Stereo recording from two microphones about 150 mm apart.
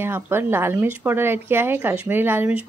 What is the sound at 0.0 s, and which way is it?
Speech, 15° right (ahead or behind).